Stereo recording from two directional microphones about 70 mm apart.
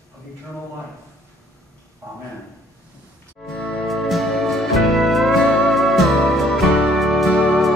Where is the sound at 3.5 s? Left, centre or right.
Centre.